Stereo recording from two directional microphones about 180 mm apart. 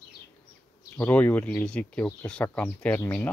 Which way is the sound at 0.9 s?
10° left (ahead or behind).